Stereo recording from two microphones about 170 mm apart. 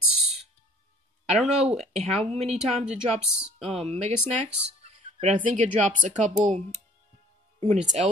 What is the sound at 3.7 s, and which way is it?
Speech, 35° right (ahead or behind).